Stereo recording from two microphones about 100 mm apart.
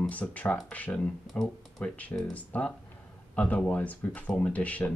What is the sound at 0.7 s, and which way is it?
Speech, 10° left (ahead or behind).